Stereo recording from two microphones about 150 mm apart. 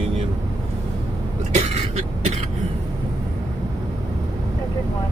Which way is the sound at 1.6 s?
45° right (ahead or behind).